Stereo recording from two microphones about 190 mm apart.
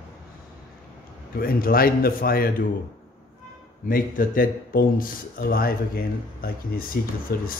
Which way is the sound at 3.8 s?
50° left (ahead or behind).